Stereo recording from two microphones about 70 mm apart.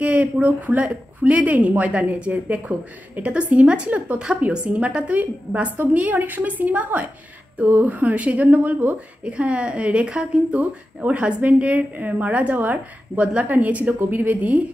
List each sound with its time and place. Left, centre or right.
0.0 s a woman's voice: right